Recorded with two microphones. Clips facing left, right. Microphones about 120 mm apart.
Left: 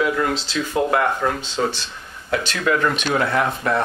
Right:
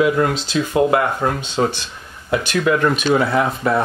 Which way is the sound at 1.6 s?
50° right (ahead or behind).